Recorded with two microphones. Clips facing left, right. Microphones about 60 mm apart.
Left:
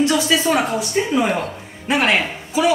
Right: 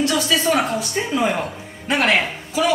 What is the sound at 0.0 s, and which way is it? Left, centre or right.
Speech, centre.